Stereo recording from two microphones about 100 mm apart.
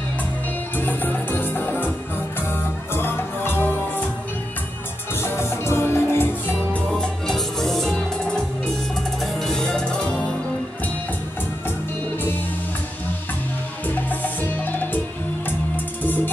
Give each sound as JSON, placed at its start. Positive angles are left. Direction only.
{"t": 0.7, "sound": "music", "side_deg": 20}
{"t": 2.9, "sound": "music", "side_deg": 20}
{"t": 5.2, "sound": "music", "side_deg": 25}
{"t": 6.9, "sound": "music", "side_deg": 5}
{"t": 9.2, "sound": "music", "side_deg": 5}
{"t": 13.8, "sound": "music", "side_deg": 15}